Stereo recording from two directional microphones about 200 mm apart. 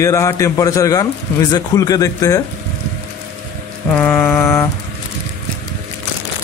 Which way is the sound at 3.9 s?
10° left (ahead or behind).